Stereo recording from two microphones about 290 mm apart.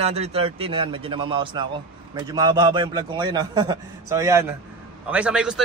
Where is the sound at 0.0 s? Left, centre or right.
Right.